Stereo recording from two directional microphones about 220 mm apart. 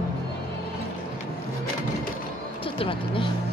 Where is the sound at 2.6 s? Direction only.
25° left (ahead or behind).